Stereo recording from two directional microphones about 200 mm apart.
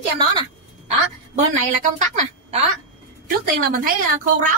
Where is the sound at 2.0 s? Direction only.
40° right (ahead or behind).